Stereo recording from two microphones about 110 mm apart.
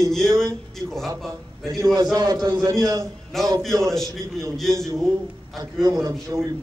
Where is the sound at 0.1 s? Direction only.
5° left (ahead or behind).